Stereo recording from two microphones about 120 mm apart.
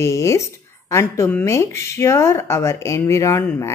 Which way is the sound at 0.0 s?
25° left (ahead or behind).